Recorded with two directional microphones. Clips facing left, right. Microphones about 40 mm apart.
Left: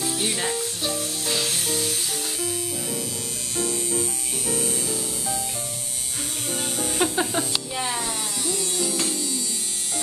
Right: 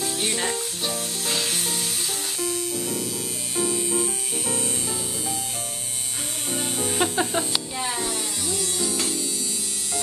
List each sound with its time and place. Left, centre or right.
0.0 s music: centre
4.5 s music: right
7.0 s music: centre
8.5 s music: centre